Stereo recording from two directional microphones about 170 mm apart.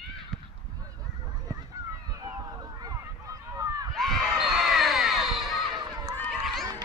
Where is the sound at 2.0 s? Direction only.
20° right (ahead or behind).